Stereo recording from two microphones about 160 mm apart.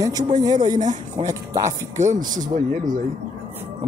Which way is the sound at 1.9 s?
50° right (ahead or behind).